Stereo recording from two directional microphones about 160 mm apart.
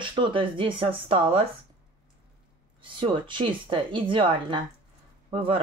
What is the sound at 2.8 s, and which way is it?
Speech, 30° right (ahead or behind).